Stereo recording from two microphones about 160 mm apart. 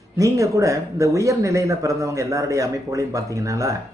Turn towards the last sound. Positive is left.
turn(degrees=-20)  # may be behind; listen again after turning